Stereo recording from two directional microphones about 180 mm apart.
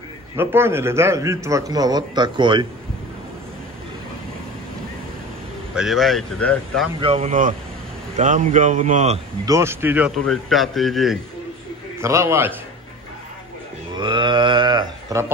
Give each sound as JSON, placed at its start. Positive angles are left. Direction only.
{"t": 0.4, "sound": "a man's voice", "side_deg": -10}
{"t": 5.8, "sound": "speech", "side_deg": 0}
{"t": 7.0, "sound": "speech", "side_deg": -35}
{"t": 9.5, "sound": "a man's voice", "side_deg": -15}
{"t": 12.0, "sound": "a man's voice", "side_deg": -15}
{"t": 13.9, "sound": "a sound", "side_deg": -25}